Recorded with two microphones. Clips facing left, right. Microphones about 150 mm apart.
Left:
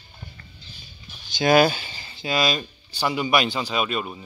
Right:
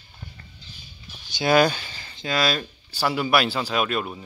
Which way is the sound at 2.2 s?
Centre (ahead or behind).